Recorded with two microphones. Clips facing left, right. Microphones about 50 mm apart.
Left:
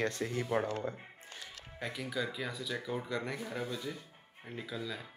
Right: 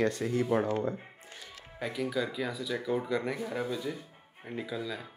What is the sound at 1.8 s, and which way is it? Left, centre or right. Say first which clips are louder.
Speech: right 5 dB; centre.